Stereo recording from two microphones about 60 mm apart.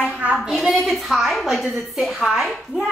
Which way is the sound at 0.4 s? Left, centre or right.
Centre.